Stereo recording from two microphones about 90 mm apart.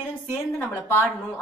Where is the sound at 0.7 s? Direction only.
25° left (ahead or behind).